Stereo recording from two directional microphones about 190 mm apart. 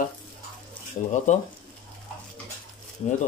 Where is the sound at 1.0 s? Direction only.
45° left (ahead or behind).